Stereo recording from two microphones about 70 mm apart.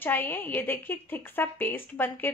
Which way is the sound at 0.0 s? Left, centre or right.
Left.